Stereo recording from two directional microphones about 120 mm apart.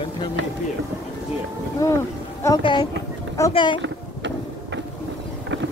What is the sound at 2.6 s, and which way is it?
Speech, 40° left (ahead or behind).